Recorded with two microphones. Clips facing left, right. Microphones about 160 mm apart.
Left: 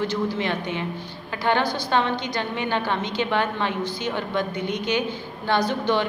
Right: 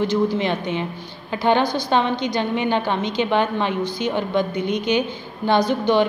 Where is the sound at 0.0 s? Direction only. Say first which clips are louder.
Right 5 dB; 20° right (ahead or behind).